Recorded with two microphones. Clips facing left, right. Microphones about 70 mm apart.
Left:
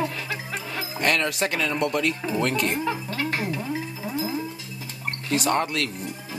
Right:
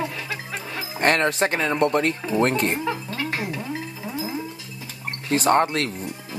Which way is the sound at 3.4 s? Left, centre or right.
Centre.